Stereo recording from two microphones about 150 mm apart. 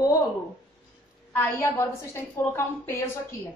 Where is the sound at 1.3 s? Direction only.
15° left (ahead or behind).